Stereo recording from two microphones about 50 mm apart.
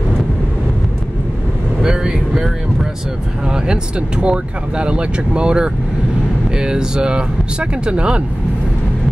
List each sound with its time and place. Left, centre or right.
1.8 s vehicle: centre
3.4 s speech: centre